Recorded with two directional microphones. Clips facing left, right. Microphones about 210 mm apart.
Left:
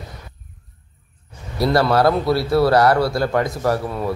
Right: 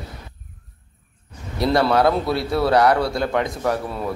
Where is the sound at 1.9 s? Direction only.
Centre (ahead or behind).